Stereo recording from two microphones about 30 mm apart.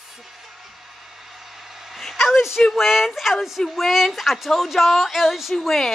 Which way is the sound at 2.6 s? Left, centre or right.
Centre.